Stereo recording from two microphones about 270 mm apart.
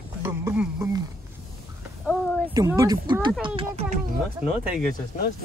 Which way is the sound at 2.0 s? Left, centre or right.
Centre.